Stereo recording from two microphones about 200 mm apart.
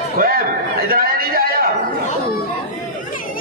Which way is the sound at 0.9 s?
50° right (ahead or behind).